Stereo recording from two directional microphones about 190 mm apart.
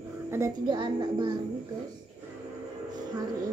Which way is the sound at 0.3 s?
20° right (ahead or behind).